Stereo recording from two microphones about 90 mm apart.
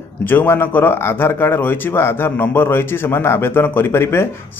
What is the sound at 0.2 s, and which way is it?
A man's voice, 20° left (ahead or behind).